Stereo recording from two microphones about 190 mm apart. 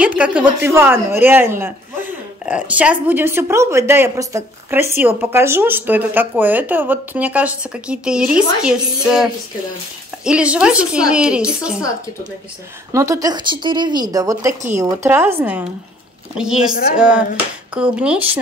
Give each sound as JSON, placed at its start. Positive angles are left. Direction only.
{"t": 0.0, "sound": "speech", "side_deg": -5}
{"t": 12.9, "sound": "speech", "side_deg": -15}